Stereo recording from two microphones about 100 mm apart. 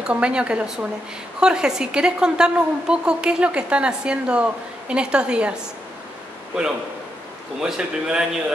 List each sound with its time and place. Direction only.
0.0 s a woman's voice: 10° right (ahead or behind)
7.6 s a woman's voice: 5° right (ahead or behind)